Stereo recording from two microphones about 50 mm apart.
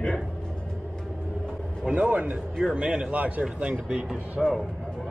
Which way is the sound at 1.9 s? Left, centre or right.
Right.